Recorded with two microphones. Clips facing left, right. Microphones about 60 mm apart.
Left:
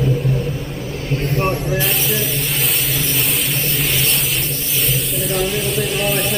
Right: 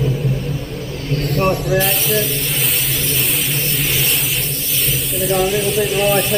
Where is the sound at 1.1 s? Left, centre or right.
Left.